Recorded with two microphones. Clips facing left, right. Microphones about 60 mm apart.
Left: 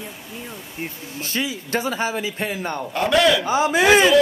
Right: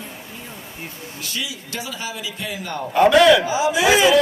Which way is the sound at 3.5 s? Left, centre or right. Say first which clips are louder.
Left 1 dB; left.